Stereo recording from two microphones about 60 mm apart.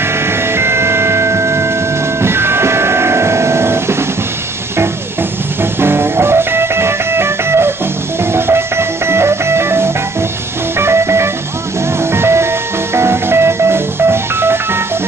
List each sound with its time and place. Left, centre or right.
0.0 s music: right
2.2 s train: right
5.6 s music: right